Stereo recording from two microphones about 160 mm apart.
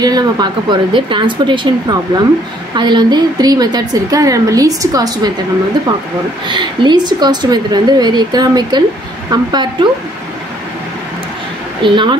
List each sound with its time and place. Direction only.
0.0 s a woman's voice: 25° right (ahead or behind)
6.4 s a woman's voice: 30° right (ahead or behind)
11.8 s a woman's voice: 30° right (ahead or behind)